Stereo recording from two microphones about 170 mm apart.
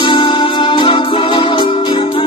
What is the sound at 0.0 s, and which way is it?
Music, 30° left (ahead or behind).